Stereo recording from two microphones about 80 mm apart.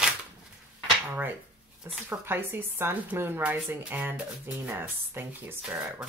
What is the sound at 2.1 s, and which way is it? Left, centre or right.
Speech, right.